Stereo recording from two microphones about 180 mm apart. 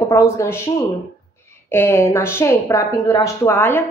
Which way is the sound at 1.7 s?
15° left (ahead or behind).